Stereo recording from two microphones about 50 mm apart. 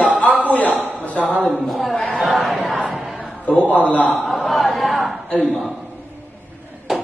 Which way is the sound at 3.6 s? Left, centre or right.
Left.